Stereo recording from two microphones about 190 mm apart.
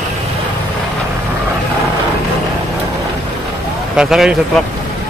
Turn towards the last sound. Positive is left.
turn(degrees=0)  # may be behind; listen again after turning